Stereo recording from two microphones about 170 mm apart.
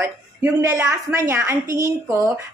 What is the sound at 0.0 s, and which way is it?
A woman's voice, 15° right (ahead or behind).